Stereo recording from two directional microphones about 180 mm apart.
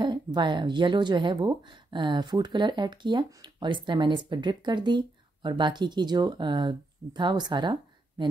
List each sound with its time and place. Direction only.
0.0 s speech: 25° right (ahead or behind)